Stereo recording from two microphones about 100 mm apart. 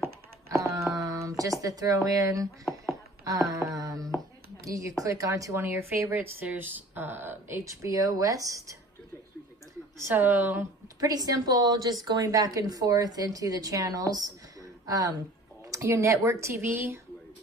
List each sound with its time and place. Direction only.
0.5 s wail: 30° right (ahead or behind)
0.9 s speech: 35° right (ahead or behind)
3.5 s wail: 35° right (ahead or behind)
4.6 s a woman's voice: 35° right (ahead or behind)
9.9 s speech: 25° right (ahead or behind)
11.0 s a woman's voice: 35° right (ahead or behind)
15.7 s speech: 30° right (ahead or behind)